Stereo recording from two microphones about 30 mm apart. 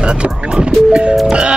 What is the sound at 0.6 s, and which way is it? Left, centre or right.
Speech, right.